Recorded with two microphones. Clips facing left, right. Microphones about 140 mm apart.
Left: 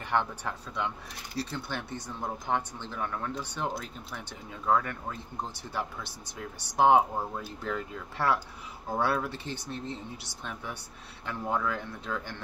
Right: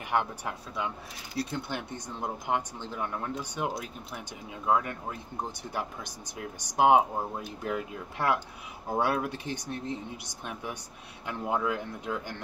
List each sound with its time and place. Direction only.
0.1 s speech: 10° right (ahead or behind)